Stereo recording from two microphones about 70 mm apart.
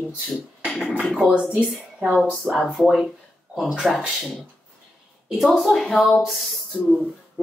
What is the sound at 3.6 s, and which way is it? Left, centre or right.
Speech, centre.